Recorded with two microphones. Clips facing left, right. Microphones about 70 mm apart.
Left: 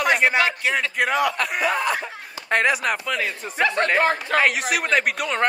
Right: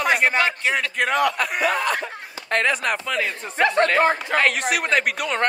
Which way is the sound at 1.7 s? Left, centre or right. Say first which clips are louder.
Even; centre.